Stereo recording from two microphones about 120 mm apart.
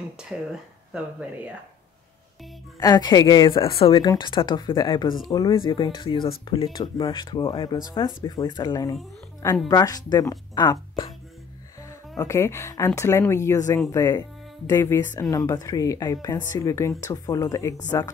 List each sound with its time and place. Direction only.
0.2 s speech: 5° right (ahead or behind)
2.8 s speech: 35° left (ahead or behind); by 4.0 s 50° left (ahead or behind)
4.0 s speech: 35° left (ahead or behind)
12.2 s a woman's voice: 25° left (ahead or behind)